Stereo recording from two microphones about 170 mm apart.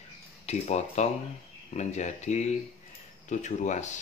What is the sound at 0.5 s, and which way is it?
Speech, 40° left (ahead or behind).